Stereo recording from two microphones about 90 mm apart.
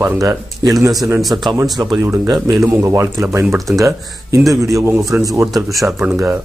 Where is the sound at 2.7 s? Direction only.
30° right (ahead or behind).